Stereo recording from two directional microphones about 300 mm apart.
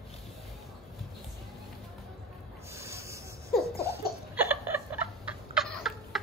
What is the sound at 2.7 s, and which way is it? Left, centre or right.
Snake, centre.